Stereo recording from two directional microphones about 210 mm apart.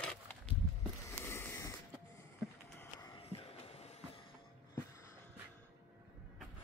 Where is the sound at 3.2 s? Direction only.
30° left (ahead or behind).